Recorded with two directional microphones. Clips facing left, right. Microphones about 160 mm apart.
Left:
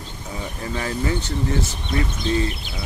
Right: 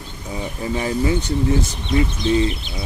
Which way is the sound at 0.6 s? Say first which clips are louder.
Right 5 dB; 20° right (ahead or behind).